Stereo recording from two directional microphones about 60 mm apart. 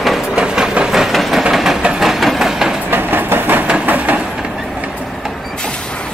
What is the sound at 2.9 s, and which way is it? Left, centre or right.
Train, right.